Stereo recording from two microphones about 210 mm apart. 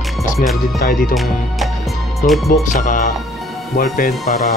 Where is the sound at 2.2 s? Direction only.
40° left (ahead or behind).